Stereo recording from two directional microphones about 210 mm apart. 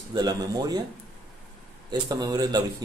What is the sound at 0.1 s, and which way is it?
Speech, 20° right (ahead or behind).